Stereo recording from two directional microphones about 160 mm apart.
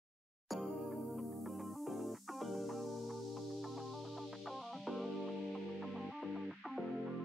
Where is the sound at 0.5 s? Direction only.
Centre (ahead or behind).